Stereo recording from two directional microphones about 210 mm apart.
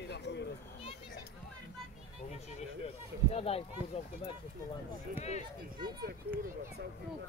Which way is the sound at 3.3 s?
30° left (ahead or behind).